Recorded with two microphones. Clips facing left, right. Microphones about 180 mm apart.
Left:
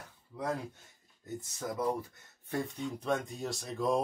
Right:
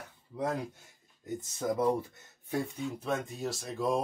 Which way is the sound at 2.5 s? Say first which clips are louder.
Right 2 dB; 5° right (ahead or behind).